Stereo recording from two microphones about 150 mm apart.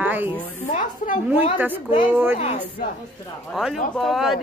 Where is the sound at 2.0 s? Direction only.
15° right (ahead or behind).